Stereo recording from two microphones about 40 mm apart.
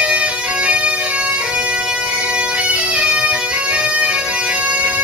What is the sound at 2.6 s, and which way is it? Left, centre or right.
Bagpipes, right.